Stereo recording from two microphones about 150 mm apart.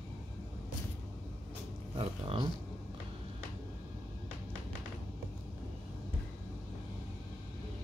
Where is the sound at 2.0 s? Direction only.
40° right (ahead or behind).